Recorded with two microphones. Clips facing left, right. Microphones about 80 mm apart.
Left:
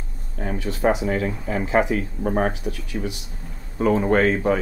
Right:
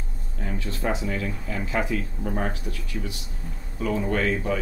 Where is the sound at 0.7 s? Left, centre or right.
Left.